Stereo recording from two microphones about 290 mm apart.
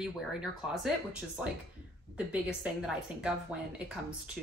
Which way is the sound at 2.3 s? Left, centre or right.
Centre.